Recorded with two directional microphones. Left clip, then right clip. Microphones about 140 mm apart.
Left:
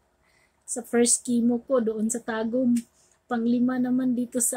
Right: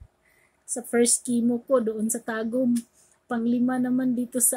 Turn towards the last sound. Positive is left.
turn(degrees=-10)  # may be behind; listen again after turning